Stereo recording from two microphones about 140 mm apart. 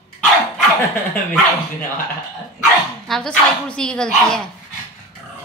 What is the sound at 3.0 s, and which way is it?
Speech, 5° left (ahead or behind).